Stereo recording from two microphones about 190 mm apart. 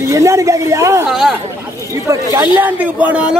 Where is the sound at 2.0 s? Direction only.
15° right (ahead or behind).